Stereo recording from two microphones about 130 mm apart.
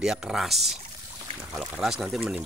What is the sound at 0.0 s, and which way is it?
Speech, 5° right (ahead or behind).